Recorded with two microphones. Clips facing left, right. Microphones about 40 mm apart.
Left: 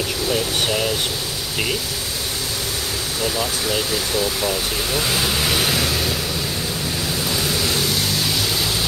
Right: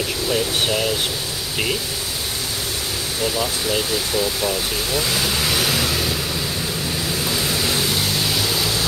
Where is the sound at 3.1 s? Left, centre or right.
Centre.